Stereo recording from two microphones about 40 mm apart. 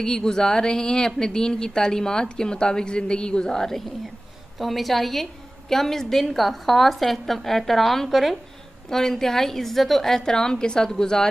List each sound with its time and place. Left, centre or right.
0.0 s a woman's voice: centre
4.6 s a woman's voice: centre